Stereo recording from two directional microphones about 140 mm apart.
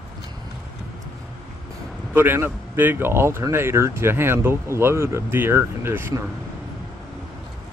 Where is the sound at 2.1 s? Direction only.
15° right (ahead or behind).